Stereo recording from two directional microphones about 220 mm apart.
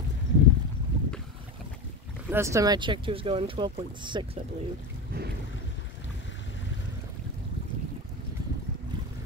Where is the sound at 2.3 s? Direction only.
15° right (ahead or behind).